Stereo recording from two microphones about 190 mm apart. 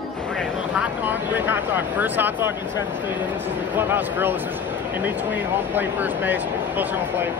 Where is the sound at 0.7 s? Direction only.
10° right (ahead or behind).